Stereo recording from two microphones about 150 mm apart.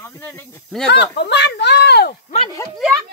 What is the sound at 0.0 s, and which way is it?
Speech, 15° left (ahead or behind).